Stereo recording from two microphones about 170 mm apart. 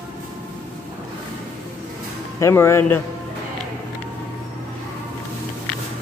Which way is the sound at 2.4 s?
15° left (ahead or behind).